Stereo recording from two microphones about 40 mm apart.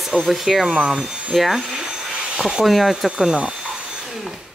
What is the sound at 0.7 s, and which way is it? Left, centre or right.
Speech, centre.